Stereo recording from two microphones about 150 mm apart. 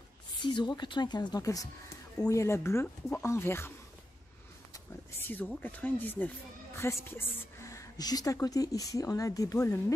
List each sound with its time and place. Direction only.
0.4 s a woman's voice: 30° left (ahead or behind); by 3.7 s 15° left (ahead or behind)
4.7 s a woman's voice: 15° left (ahead or behind)